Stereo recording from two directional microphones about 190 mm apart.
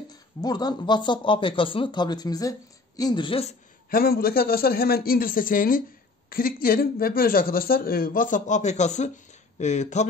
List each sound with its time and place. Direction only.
0.1 s speech: 20° left (ahead or behind)
3.9 s speech: 50° left (ahead or behind)